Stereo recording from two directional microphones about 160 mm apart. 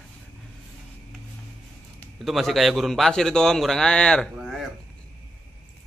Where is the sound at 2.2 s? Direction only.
Centre (ahead or behind).